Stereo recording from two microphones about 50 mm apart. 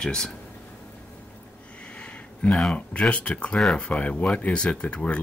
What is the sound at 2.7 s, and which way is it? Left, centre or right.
Speech, left.